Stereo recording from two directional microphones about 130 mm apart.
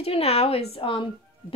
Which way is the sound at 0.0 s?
50° left (ahead or behind).